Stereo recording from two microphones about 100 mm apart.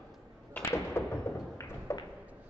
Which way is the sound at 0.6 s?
25° left (ahead or behind).